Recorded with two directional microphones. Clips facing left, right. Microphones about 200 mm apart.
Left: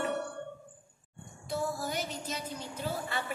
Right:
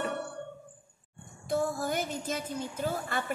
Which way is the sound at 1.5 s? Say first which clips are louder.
Right 4 dB; 50° right (ahead or behind).